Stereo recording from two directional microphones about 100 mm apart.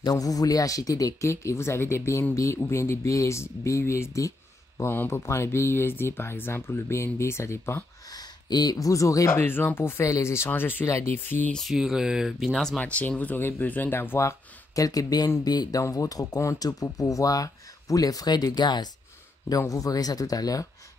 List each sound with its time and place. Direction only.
0.0 s speech: 40° left (ahead or behind)
8.1 s speech: 45° left (ahead or behind); by 11.5 s 20° left (ahead or behind)
11.5 s speech: centre (ahead or behind); by 14.3 s 25° left (ahead or behind)
14.8 s speech: 35° left (ahead or behind)